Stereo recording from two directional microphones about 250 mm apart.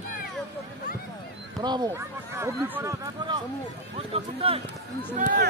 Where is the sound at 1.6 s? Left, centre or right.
Centre.